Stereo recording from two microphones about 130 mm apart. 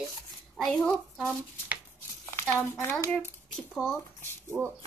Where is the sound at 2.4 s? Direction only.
20° left (ahead or behind).